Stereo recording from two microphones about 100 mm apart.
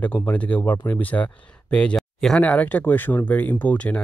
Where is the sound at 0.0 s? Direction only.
15° left (ahead or behind).